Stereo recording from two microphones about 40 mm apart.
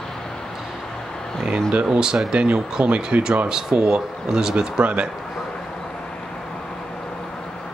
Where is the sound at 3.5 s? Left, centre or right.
Centre.